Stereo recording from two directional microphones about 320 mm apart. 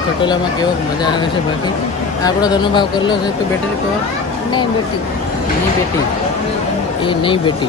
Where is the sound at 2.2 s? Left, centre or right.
Centre.